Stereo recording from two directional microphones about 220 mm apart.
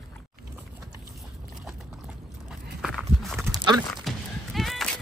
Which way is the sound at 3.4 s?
20° right (ahead or behind).